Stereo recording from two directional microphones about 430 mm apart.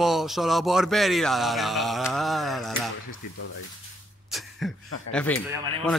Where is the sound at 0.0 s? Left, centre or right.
Centre.